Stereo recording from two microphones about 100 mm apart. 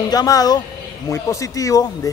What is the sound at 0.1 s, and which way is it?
A man's voice, 40° left (ahead or behind).